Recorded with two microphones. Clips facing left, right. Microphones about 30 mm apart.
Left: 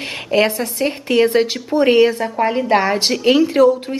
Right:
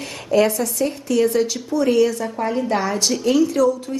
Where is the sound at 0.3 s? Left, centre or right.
Left.